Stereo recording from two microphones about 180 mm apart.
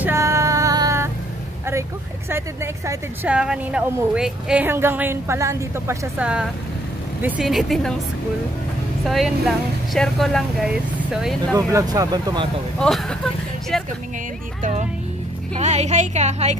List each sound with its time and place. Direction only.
0.0 s a sound: 15° right (ahead or behind)
1.7 s speech: 15° right (ahead or behind)
9.0 s speech: centre (ahead or behind)
11.5 s speech: 20° right (ahead or behind)
12.7 s speech: 5° left (ahead or behind)
15.5 s speech: 40° right (ahead or behind)